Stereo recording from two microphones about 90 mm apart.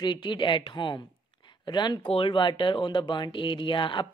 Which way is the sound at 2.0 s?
70° left (ahead or behind).